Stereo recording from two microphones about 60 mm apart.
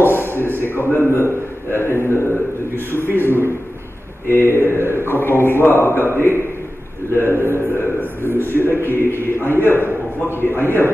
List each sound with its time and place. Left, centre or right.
0.0 s a man's voice: left
4.7 s a man's voice: right
5.0 s a man's voice: left
7.3 s a man's voice: right
8.5 s a man's voice: left